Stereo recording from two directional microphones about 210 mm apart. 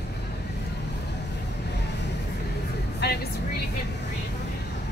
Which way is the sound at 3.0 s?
55° left (ahead or behind).